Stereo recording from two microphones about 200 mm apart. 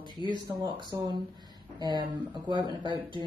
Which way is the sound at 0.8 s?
20° right (ahead or behind).